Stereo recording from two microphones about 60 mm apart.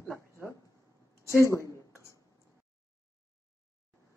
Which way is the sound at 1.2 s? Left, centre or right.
Left.